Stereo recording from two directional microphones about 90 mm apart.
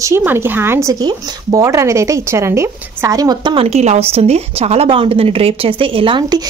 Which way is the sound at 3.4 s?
85° right.